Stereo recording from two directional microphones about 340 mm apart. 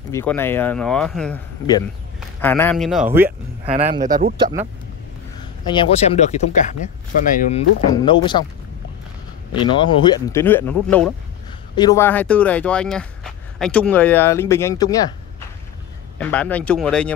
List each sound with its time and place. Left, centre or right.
0.1 s speech: centre
3.3 s speech: centre
5.7 s speech: centre
9.5 s speech: centre
16.2 s speech: centre